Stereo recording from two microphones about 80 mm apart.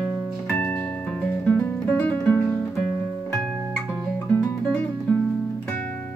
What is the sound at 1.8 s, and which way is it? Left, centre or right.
Music, centre.